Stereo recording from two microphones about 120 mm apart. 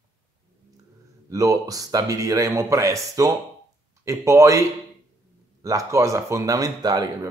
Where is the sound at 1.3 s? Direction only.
30° right (ahead or behind).